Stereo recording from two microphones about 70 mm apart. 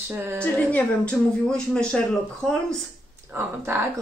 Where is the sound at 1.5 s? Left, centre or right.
Centre.